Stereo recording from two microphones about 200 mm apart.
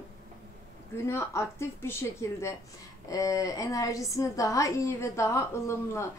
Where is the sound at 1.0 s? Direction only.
15° left (ahead or behind).